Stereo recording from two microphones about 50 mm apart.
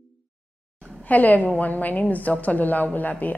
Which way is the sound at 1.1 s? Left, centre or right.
Left.